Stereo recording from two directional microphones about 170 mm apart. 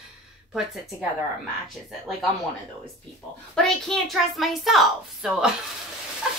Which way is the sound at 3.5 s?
Centre (ahead or behind).